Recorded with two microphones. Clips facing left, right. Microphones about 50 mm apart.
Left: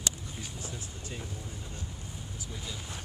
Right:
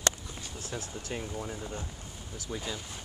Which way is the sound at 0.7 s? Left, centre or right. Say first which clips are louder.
Right 4 dB; right.